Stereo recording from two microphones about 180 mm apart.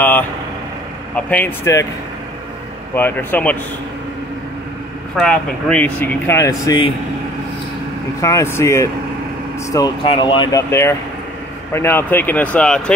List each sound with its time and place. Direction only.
1.1 s speech: 10° left (ahead or behind)
2.9 s speech: 10° left (ahead or behind)
5.1 s speech: 5° left (ahead or behind)
8.2 s speech: 15° left (ahead or behind)
10.7 s speech: 15° left (ahead or behind)